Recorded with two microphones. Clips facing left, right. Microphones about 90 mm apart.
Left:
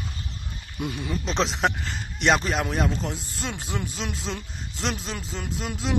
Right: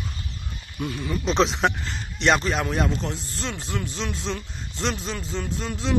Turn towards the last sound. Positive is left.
turn(degrees=5)  # may be behind; listen again after turning